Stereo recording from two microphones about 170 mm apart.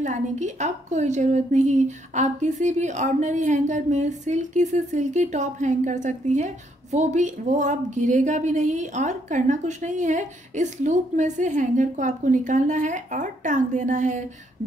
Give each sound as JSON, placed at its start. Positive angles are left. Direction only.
{"t": 0.0, "sound": "a woman's voice", "side_deg": -45}